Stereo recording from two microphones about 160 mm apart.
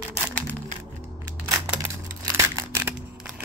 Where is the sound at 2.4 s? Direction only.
15° right (ahead or behind).